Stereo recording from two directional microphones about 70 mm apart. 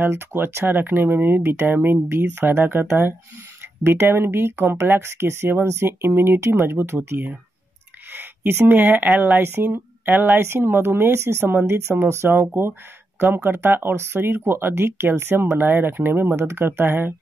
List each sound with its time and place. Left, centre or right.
0.0 s speech: right